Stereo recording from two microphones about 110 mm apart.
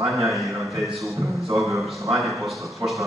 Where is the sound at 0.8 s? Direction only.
Centre (ahead or behind).